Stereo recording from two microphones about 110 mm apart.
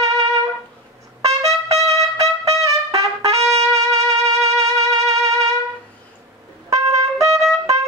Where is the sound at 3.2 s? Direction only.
70° right (ahead or behind).